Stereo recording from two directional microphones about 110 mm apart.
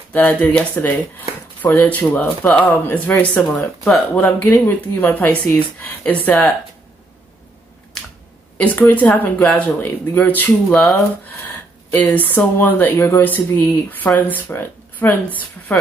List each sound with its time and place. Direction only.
0.1 s speech: 15° left (ahead or behind)
3.4 s speech: centre (ahead or behind)
4.1 s speech: 15° left (ahead or behind)
8.5 s speech: 15° left (ahead or behind)
11.2 s a sound: 15° left (ahead or behind)
12.5 s speech: 15° left (ahead or behind)